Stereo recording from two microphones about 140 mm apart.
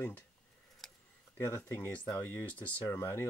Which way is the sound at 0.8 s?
Centre (ahead or behind).